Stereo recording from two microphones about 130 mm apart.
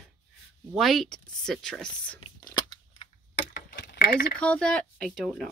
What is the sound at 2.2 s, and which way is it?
Crunch, 35° left (ahead or behind).